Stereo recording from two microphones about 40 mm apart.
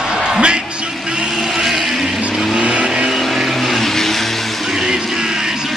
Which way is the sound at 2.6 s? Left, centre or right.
Right.